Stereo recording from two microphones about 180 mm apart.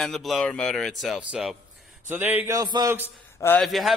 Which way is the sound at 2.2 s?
10° right (ahead or behind).